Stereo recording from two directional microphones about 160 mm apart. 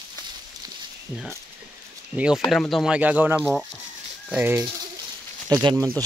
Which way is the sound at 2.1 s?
5° right (ahead or behind).